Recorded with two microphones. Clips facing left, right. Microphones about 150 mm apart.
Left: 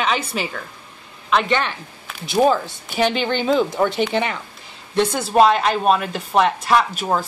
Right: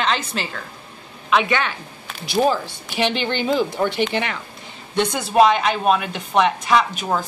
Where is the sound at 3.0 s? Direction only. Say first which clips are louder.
Left 2 dB; centre (ahead or behind).